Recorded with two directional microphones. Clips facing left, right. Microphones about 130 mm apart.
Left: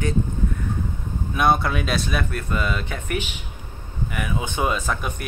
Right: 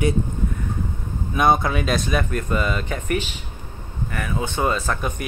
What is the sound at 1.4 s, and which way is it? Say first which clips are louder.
Speech: right 2 dB; centre (ahead or behind).